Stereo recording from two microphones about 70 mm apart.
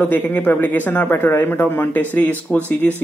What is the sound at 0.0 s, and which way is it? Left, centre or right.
Speech, left.